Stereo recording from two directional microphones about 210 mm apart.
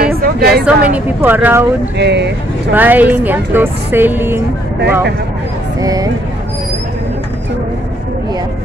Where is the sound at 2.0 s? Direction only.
55° right (ahead or behind).